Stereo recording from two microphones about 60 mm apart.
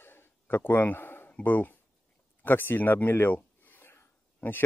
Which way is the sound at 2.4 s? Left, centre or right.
Left.